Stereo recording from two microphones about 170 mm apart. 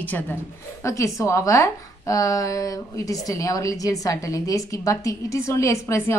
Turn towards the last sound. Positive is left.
turn(degrees=15)  # may be behind; listen again after turning